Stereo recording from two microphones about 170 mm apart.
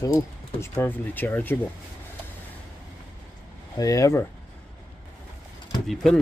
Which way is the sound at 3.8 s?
20° left (ahead or behind).